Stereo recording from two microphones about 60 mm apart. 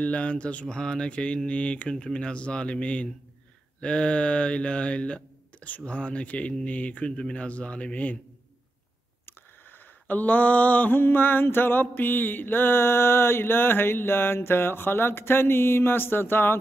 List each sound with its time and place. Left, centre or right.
0.0 s mantra: left
2.1 s speech: centre
3.8 s mantra: centre
9.2 s a sound: left